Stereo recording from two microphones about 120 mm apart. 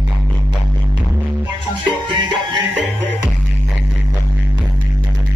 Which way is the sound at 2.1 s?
40° right (ahead or behind).